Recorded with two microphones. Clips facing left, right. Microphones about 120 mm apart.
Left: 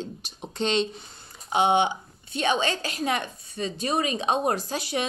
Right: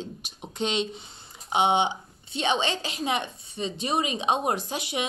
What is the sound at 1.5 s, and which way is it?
A woman's voice, 20° right (ahead or behind).